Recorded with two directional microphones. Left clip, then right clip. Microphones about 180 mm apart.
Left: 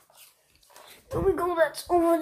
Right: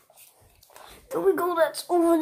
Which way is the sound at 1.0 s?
20° right (ahead or behind).